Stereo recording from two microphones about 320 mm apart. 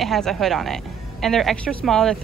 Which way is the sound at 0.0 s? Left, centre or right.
Centre.